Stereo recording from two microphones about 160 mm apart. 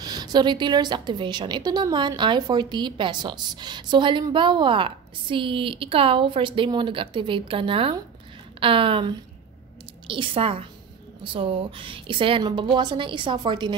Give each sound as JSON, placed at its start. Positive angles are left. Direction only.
{"t": 0.0, "sound": "a woman's voice", "side_deg": -25}